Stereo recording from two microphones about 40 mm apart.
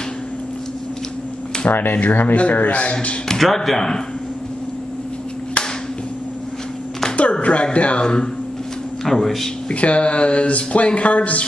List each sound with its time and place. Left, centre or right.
1.7 s speech: left
2.3 s speech: left
2.7 s speech: left
3.3 s speech: centre
7.4 s speech: left
9.0 s speech: centre
9.7 s speech: left